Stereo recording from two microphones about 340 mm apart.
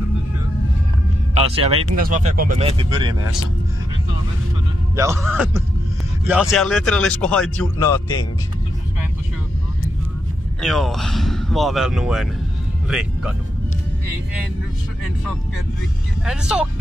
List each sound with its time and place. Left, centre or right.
1.3 s speech: centre
4.9 s speech: centre
10.6 s speech: centre
16.3 s speech: centre